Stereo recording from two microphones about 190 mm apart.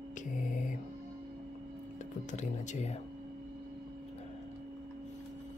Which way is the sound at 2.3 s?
35° left (ahead or behind).